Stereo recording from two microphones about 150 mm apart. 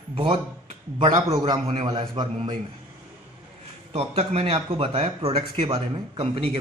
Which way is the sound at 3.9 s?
40° right (ahead or behind).